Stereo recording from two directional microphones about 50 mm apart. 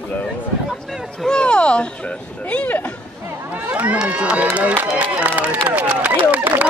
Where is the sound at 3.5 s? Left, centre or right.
Right.